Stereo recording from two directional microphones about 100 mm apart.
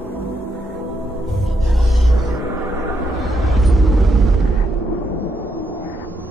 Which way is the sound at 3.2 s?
Centre (ahead or behind).